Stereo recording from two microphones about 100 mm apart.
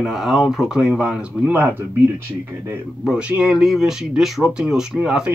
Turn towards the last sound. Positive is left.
turn(degrees=-10)  # may be behind; listen again after turning